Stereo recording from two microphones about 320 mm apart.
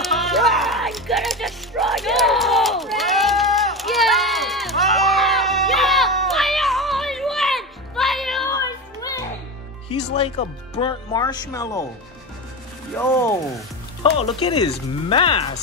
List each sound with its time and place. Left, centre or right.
0.0 s music: centre
8.5 s music: centre
9.8 s speech: centre
14.1 s speech: centre